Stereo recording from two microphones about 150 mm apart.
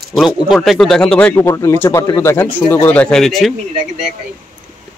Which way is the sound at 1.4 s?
20° left (ahead or behind).